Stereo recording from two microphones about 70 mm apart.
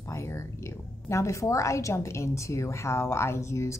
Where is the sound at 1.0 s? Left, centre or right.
Left.